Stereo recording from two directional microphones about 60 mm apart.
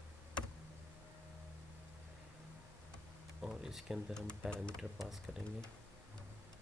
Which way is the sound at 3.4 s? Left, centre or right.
Centre.